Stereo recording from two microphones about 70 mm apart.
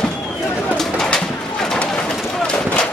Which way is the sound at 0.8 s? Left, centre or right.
Centre.